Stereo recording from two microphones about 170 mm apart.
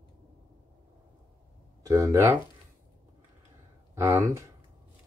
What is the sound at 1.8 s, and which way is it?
Speech, 20° right (ahead or behind).